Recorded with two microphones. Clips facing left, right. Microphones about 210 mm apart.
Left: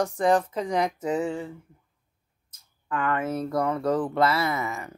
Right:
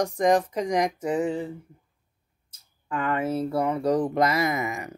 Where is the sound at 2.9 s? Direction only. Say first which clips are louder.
Even; 25° right (ahead or behind).